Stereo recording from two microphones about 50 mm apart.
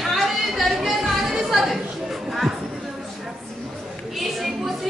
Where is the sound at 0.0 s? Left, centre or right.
Centre.